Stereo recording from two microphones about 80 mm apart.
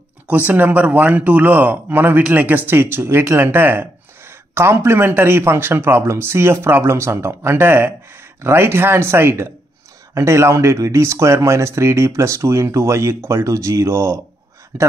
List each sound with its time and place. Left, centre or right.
0.3 s a man's voice: right